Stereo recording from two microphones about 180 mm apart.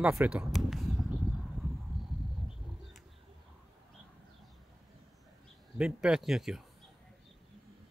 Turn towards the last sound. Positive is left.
turn(degrees=0)  # may be behind; listen again after turning